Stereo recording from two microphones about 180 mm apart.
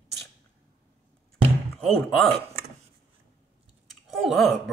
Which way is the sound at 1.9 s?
Centre (ahead or behind).